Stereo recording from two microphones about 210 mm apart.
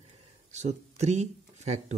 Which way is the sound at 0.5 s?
35° right (ahead or behind).